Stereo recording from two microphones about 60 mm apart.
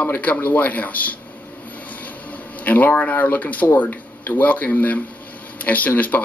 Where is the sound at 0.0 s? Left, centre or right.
Left.